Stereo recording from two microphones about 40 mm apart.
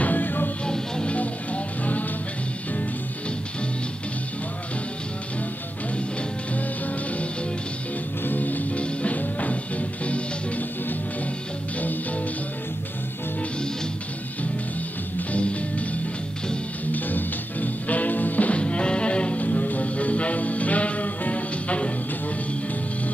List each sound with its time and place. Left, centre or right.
0.0 s music: left
0.7 s music: centre
1.1 s music: left
8.3 s music: left
15.1 s music: left
18.6 s music: left
19.4 s music: left